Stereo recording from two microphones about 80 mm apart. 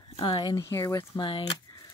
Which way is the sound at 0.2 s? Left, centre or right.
Left.